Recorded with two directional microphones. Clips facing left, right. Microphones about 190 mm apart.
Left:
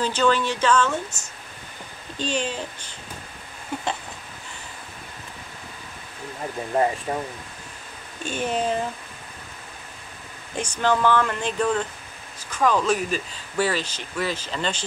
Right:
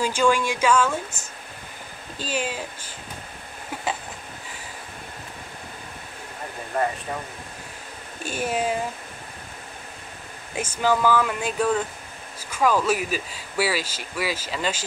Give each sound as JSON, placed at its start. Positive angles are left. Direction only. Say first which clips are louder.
{"t": 0.0, "sound": "speech", "louder": "even", "side_deg": -10}
{"t": 2.1, "sound": "speech", "louder": "left 2 dB", "side_deg": -5}
{"t": 3.7, "sound": "a sound", "louder": "left 4 dB", "side_deg": -5}
{"t": 7.1, "sound": "speech", "louder": "left 4 dB", "side_deg": 25}
{"t": 8.2, "sound": "speech", "louder": "even", "side_deg": -10}
{"t": 10.5, "sound": "speech", "louder": "even", "side_deg": -5}